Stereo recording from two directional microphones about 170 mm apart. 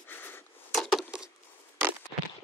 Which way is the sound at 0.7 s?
Centre (ahead or behind).